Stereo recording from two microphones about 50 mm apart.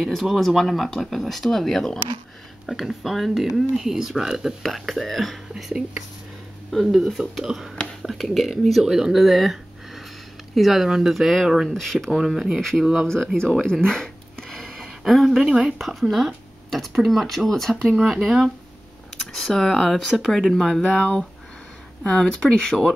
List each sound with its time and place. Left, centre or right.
0.2 s speech: centre
2.6 s speech: centre
5.6 s speech: centre
11.7 s speech: centre
12.2 s speech: centre
14.6 s a sound: centre
15.4 s speech: centre
15.8 s speech: centre
18.0 s speech: centre
19.3 s speech: centre
22.0 s speech: centre